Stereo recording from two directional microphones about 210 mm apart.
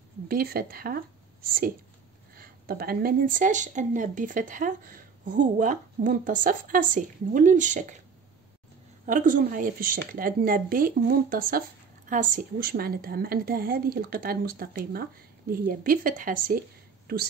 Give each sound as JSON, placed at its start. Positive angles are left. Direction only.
{"t": 0.3, "sound": "speech", "side_deg": -45}
{"t": 9.0, "sound": "a woman's voice", "side_deg": -40}